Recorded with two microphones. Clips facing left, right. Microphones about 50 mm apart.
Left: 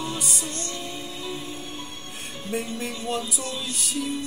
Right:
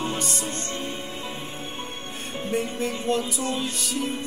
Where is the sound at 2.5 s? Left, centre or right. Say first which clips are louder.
Right 3 dB; centre.